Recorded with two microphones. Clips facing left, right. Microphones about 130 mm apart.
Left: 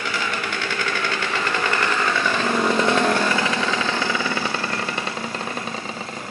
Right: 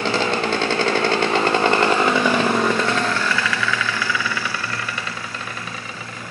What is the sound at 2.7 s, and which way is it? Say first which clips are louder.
Chainsaw: left 2 dB; 20° left (ahead or behind).